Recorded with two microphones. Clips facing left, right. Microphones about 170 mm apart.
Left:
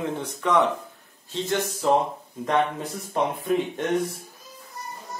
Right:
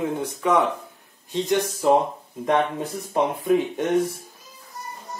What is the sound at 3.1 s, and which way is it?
Speech, 15° right (ahead or behind).